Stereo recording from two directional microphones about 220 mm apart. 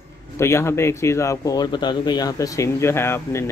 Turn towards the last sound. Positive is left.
turn(degrees=10)  # may be behind; listen again after turning